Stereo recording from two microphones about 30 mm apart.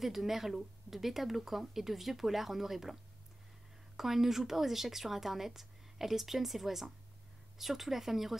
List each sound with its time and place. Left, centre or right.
0.0 s a woman's voice: centre